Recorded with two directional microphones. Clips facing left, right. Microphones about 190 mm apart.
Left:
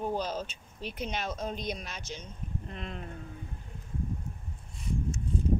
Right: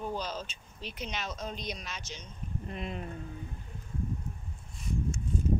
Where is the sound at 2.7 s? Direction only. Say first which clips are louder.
Right 6 dB; 5° right (ahead or behind).